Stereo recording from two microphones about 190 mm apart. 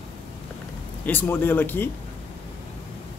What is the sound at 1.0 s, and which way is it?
Speech, 10° left (ahead or behind).